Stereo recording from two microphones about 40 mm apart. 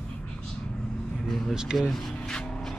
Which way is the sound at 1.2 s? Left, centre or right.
Centre.